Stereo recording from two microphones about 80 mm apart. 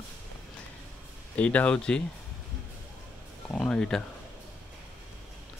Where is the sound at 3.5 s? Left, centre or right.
Centre.